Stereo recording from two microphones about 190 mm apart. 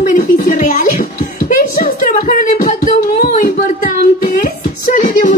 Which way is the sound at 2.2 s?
45° left (ahead or behind).